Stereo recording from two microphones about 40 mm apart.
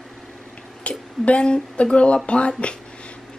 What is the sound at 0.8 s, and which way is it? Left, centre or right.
Speech, left.